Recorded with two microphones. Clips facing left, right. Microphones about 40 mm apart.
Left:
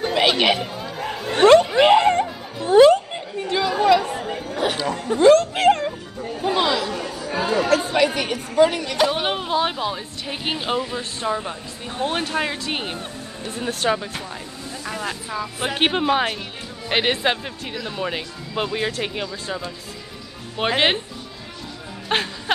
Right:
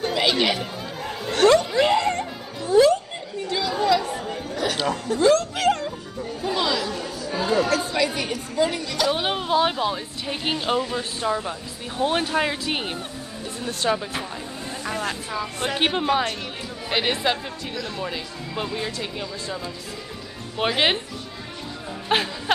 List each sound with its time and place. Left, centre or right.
0.1 s chatter: left
1.5 s music: left
3.4 s chatter: left
5.0 s a sound: left
6.4 s chatter: left
7.6 s speech: left
9.1 s speech: centre
15.6 s speech: centre
20.7 s speech: centre
22.1 s speech: centre